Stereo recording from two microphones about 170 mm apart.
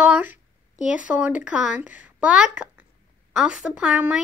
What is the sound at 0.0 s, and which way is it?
A woman's voice, 10° right (ahead or behind).